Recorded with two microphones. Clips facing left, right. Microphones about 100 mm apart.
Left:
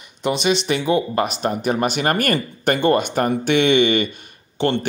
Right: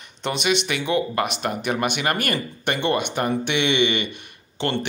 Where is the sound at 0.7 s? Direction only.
30° left (ahead or behind).